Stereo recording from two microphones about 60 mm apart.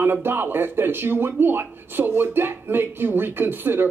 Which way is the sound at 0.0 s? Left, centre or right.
Right.